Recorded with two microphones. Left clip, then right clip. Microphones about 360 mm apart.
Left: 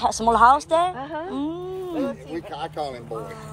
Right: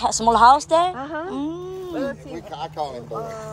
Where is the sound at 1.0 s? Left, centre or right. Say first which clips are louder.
Right 2 dB; right.